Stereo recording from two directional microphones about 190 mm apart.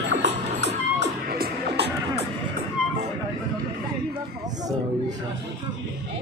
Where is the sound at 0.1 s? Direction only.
65° right (ahead or behind).